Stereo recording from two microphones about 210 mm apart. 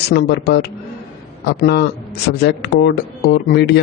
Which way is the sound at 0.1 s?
50° left (ahead or behind).